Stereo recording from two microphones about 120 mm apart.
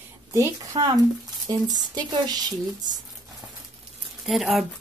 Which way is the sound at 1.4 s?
30° right (ahead or behind).